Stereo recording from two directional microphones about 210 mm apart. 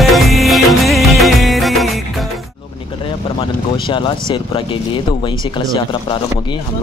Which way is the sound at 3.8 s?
25° left (ahead or behind).